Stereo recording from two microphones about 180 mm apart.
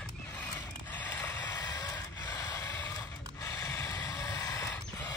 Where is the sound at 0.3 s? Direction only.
10° left (ahead or behind).